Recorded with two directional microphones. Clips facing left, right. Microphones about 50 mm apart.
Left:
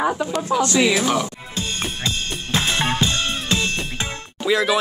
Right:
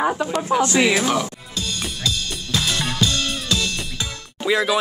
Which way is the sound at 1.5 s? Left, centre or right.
Left.